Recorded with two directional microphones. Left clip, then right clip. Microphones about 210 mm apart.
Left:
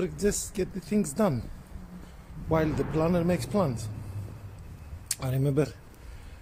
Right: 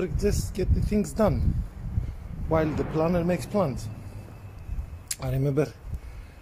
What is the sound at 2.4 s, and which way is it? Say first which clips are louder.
Speech: right 2 dB; 5° left (ahead or behind).